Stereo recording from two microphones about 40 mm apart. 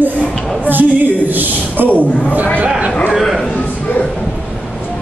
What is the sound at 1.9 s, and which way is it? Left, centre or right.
Speech, left.